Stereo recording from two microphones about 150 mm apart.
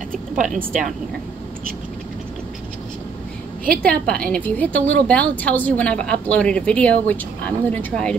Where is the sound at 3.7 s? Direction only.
10° left (ahead or behind).